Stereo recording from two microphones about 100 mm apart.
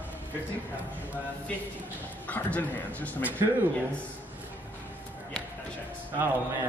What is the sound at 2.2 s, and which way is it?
Speech, 15° left (ahead or behind).